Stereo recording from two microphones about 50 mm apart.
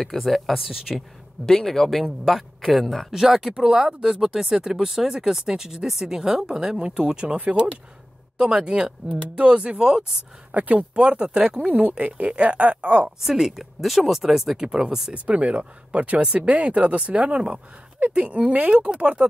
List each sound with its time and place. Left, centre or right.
0.0 s speech: centre
1.4 s a man's voice: centre
8.4 s speech: centre
10.5 s speech: right
11.0 s speech: centre
13.2 s speech: centre
15.1 s speech: right